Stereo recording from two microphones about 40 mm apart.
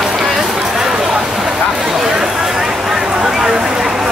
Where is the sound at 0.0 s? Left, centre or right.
Centre.